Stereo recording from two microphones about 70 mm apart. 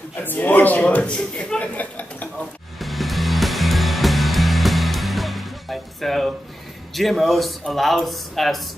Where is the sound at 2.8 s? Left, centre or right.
Centre.